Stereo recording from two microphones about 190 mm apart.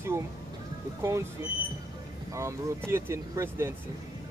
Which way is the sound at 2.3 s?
15° right (ahead or behind).